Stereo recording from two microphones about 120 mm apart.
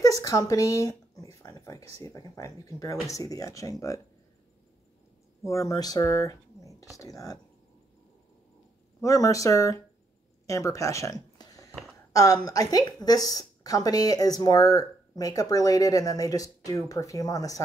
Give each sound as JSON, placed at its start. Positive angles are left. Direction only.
{"t": 0.0, "sound": "speech", "side_deg": 30}
{"t": 5.4, "sound": "speech", "side_deg": 25}
{"t": 9.0, "sound": "speech", "side_deg": 30}
{"t": 10.4, "sound": "a sound", "side_deg": 25}
{"t": 12.1, "sound": "a woman's voice", "side_deg": 30}